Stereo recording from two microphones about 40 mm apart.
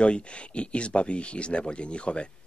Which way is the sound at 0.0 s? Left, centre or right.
Left.